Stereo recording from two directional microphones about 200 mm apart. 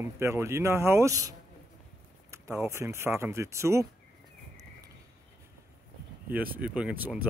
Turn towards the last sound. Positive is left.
turn(degrees=-10)  # may be behind; listen again after turning